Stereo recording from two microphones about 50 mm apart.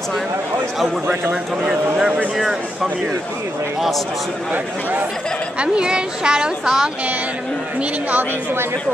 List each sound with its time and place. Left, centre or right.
1.3 s a woman's voice: centre
5.6 s a woman's voice: centre